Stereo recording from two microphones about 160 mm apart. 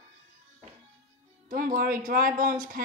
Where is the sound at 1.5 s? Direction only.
55° right (ahead or behind).